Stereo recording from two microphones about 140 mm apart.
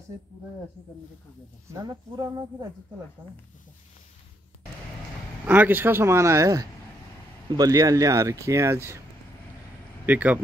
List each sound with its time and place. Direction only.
1.7 s speech: 25° right (ahead or behind)
5.5 s speech: 15° right (ahead or behind)
10.0 s speech: 10° right (ahead or behind)